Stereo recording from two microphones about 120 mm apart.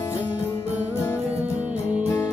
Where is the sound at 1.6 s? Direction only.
10° right (ahead or behind).